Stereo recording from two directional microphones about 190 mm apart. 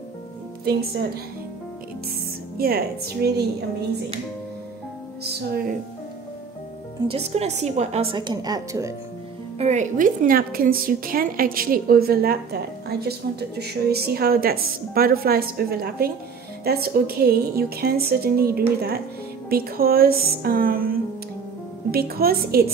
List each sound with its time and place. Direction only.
2.5 s a woman's voice: 50° right (ahead or behind)
5.2 s a woman's voice: 55° right (ahead or behind)
7.1 s a woman's voice: 35° right (ahead or behind); by 8.9 s 20° right (ahead or behind)
9.6 s a woman's voice: 35° right (ahead or behind); by 22.7 s 55° right (ahead or behind)